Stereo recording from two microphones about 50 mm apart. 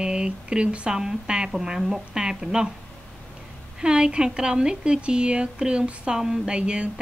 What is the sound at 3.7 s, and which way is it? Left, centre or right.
Speech, centre.